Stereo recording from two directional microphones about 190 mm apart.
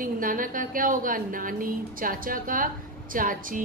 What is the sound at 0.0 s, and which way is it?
A woman's voice, 45° right (ahead or behind).